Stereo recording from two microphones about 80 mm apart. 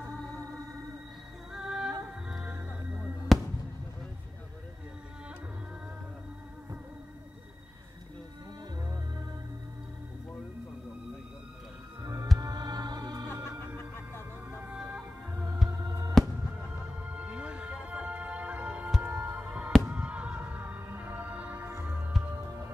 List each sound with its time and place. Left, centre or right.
1.5 s music: centre
3.3 s basketball bounce: centre
12.0 s music: right
12.4 s music: right
13.7 s music: left
14.5 s music: centre
15.3 s organ: right
15.8 s music: right
16.8 s music: centre